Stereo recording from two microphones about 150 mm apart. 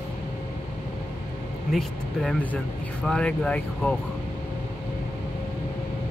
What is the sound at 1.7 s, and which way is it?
Speech, 5° left (ahead or behind).